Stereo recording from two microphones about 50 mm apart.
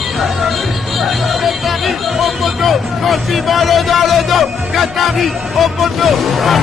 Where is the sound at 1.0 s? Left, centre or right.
Centre.